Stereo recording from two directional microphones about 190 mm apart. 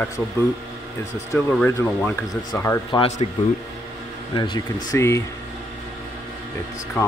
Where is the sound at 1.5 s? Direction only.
10° left (ahead or behind).